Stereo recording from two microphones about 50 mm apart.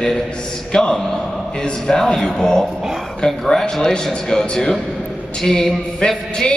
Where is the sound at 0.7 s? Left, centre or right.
Centre.